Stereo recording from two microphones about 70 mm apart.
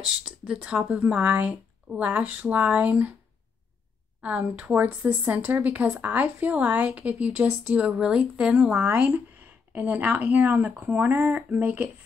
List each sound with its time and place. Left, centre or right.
0.0 s speech: centre
4.2 s speech: right